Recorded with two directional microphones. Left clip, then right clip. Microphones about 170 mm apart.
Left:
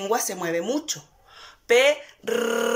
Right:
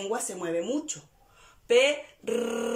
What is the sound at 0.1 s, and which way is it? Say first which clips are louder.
Speech: left 7 dB; 5° right (ahead or behind).